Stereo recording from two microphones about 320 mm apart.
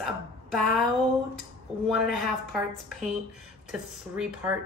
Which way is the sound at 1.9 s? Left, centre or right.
Centre.